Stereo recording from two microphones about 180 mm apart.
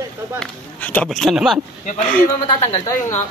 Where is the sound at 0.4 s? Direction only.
10° left (ahead or behind).